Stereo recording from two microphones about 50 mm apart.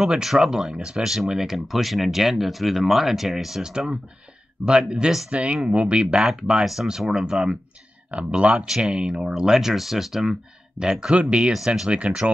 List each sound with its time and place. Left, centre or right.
0.0 s speech: centre
4.6 s speech: centre
8.1 s speech: right
8.6 s speech: centre
10.8 s speech: centre
11.5 s speech: centre
11.9 s speech: right